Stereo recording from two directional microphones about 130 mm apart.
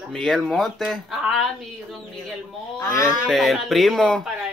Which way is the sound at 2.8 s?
25° left (ahead or behind).